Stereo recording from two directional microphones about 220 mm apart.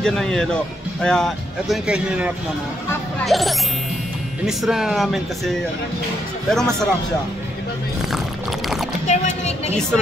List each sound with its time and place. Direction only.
0.0 s speech: centre (ahead or behind)
6.5 s speech: centre (ahead or behind)
9.0 s a sound: 30° left (ahead or behind)